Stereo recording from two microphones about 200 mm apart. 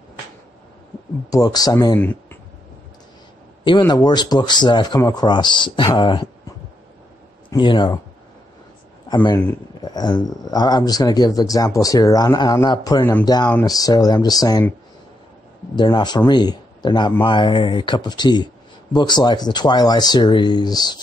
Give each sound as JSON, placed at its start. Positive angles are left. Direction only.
{"t": 1.3, "sound": "speech", "side_deg": 20}
{"t": 3.6, "sound": "speech", "side_deg": 20}
{"t": 7.5, "sound": "speech", "side_deg": 25}
{"t": 9.1, "sound": "speech", "side_deg": 20}
{"t": 15.7, "sound": "speech", "side_deg": 20}